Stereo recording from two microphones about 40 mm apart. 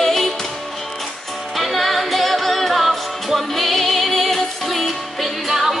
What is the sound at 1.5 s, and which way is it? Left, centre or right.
Music, centre.